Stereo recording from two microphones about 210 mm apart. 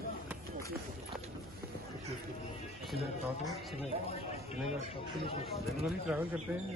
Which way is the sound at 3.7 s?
30° left (ahead or behind).